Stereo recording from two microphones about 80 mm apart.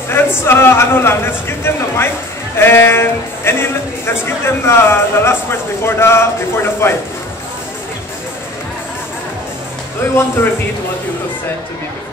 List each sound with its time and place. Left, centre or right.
0.2 s a sound: left
0.5 s a man's voice: left
10.1 s a man's voice: left